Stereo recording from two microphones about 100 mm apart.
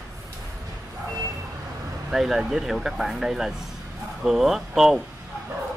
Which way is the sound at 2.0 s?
5° right (ahead or behind).